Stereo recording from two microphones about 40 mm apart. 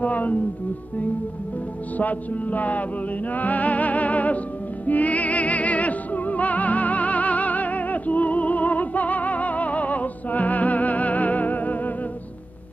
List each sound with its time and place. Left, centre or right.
0.0 s speech: left
2.0 s music: left